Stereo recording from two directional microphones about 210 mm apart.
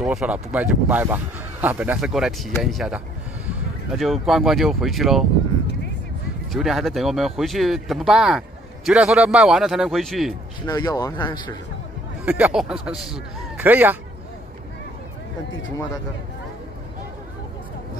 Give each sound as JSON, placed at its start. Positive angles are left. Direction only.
{"t": 0.0, "sound": "speech", "side_deg": -5}
{"t": 6.5, "sound": "speech", "side_deg": 0}
{"t": 10.7, "sound": "speech", "side_deg": 20}
{"t": 12.3, "sound": "speech", "side_deg": -5}